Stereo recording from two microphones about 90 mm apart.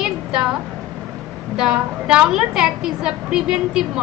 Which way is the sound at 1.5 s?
10° right (ahead or behind).